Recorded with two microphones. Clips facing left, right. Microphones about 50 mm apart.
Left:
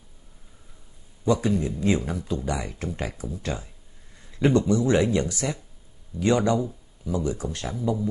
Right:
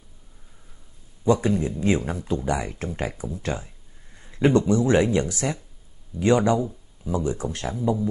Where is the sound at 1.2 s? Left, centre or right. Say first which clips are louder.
Right 2 dB; right.